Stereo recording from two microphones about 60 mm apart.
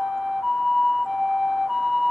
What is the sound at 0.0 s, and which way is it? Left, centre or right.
Ambulance, centre.